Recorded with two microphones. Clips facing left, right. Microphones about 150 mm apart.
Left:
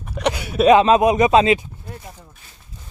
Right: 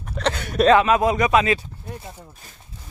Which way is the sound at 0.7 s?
20° left (ahead or behind).